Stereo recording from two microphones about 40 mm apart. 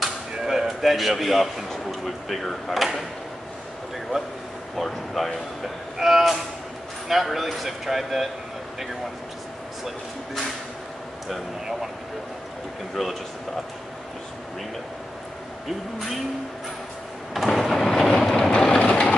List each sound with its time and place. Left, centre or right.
0.0 s chop: centre
0.7 s a man's voice: centre
4.7 s a man's voice: centre
17.5 s train: centre
18.3 s train: left
18.8 s vehicle: left